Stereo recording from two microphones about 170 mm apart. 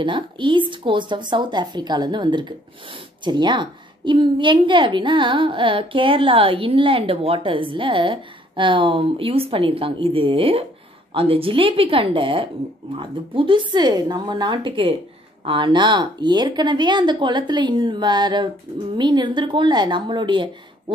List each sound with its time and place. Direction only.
0.0 s a woman's voice: 30° right (ahead or behind)